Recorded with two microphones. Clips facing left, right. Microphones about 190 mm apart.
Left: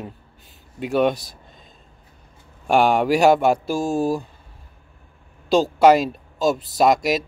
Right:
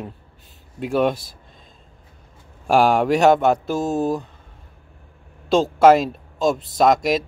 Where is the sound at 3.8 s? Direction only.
20° right (ahead or behind).